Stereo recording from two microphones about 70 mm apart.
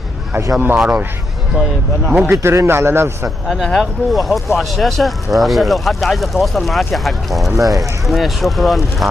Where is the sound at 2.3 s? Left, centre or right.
Right.